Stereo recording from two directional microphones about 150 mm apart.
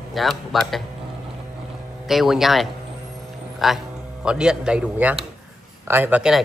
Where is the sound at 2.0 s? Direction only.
Centre (ahead or behind).